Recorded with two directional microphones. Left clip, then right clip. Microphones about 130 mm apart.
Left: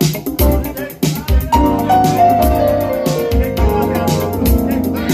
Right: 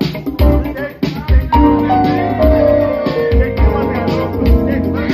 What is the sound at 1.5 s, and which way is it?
Music, 50° left (ahead or behind).